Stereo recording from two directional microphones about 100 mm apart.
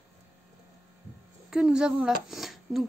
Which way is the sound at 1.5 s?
5° right (ahead or behind).